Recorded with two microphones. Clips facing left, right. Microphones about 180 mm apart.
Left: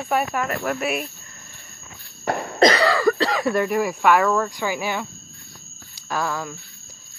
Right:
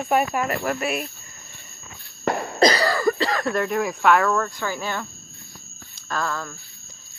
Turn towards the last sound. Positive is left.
turn(degrees=10)  # may be behind; listen again after turning